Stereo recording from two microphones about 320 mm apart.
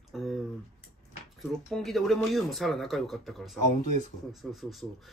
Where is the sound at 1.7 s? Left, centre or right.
Centre.